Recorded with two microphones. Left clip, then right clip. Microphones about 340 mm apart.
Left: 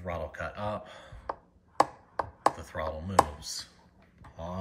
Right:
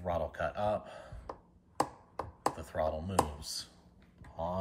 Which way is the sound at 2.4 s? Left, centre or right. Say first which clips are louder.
Left 3 dB; centre.